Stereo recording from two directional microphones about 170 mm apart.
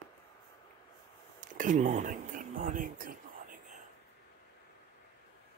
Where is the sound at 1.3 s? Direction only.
50° right (ahead or behind).